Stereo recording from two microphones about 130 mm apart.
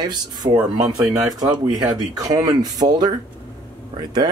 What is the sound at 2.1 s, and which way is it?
Speech, 30° right (ahead or behind).